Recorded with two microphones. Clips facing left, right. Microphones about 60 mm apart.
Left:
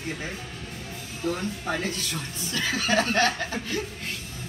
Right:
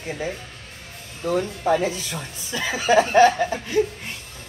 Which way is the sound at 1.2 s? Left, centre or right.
Centre.